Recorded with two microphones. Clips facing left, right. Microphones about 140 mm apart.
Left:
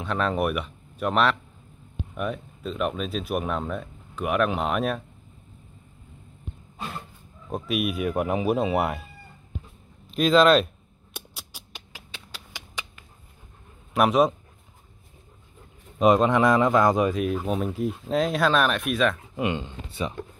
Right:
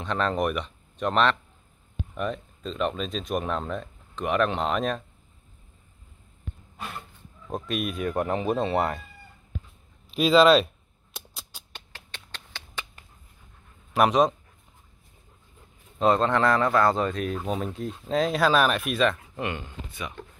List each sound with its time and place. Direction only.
0.0 s speech: 5° left (ahead or behind)
7.4 s speech: 5° left (ahead or behind)
10.1 s speech: 5° right (ahead or behind)
11.1 s a sound: 10° left (ahead or behind)
13.9 s speech: centre (ahead or behind)
16.0 s speech: 15° left (ahead or behind)
19.3 s speech: 20° left (ahead or behind)
19.9 s speech: 30° left (ahead or behind)